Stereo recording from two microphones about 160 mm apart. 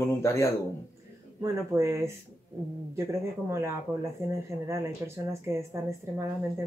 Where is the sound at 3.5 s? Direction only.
15° right (ahead or behind).